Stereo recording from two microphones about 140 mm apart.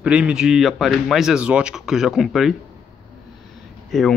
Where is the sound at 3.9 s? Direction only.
Centre (ahead or behind).